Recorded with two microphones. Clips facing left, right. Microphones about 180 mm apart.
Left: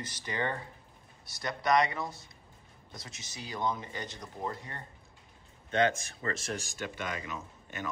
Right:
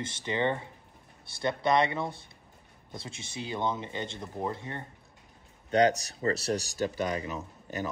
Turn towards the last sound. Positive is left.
turn(degrees=-35)  # may be behind; listen again after turning